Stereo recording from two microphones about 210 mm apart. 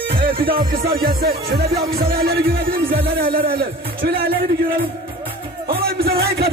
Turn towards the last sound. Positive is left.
turn(degrees=-50)  # may be behind; listen again after turning